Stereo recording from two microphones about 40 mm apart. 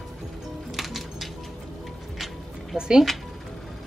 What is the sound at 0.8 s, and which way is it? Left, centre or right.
Music, centre.